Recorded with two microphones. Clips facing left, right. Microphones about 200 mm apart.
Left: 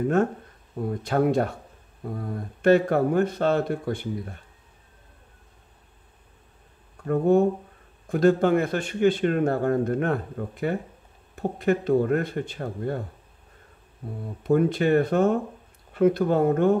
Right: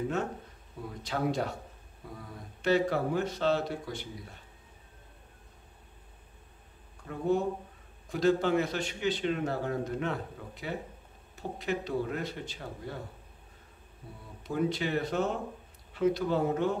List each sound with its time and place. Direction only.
0.7 s a man's voice: 55° left (ahead or behind)
7.1 s a man's voice: 55° left (ahead or behind)
14.2 s a man's voice: 55° left (ahead or behind)